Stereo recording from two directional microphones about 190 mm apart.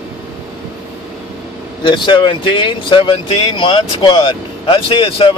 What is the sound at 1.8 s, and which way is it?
Speech, 25° left (ahead or behind).